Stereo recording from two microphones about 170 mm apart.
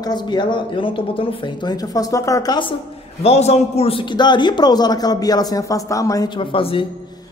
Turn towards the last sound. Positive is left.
turn(degrees=30)  # may be behind; listen again after turning